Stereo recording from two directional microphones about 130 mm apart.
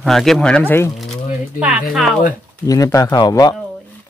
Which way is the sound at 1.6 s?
5° right (ahead or behind).